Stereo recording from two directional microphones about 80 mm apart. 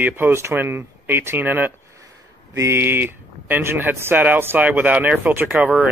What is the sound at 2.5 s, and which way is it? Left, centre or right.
Speech, right.